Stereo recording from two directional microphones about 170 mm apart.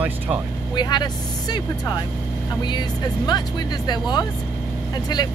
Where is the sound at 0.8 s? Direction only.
25° left (ahead or behind).